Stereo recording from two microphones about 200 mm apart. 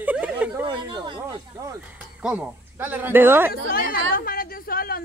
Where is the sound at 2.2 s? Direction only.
5° right (ahead or behind).